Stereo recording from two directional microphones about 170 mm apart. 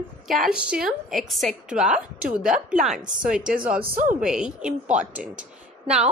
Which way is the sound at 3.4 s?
55° right (ahead or behind).